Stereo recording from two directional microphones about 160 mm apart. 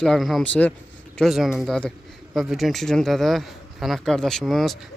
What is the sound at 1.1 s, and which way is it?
A man's voice, centre (ahead or behind).